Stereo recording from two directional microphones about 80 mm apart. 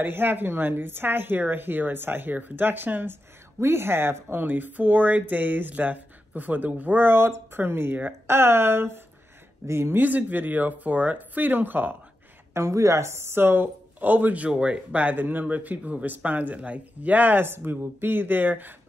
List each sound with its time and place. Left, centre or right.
0.0 s speech: right
12.5 s speech: right